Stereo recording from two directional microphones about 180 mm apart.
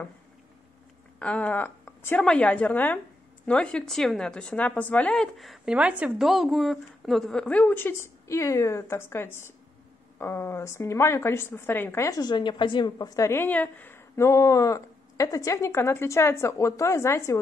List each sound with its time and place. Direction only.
1.2 s a woman's voice: 5° left (ahead or behind)